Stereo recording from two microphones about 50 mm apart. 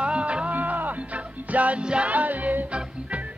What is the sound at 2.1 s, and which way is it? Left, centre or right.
Music, right.